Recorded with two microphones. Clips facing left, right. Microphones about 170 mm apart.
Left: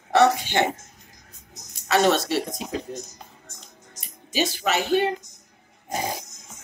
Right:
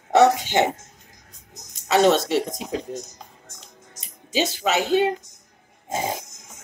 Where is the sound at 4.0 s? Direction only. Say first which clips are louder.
Right 2 dB; 20° right (ahead or behind).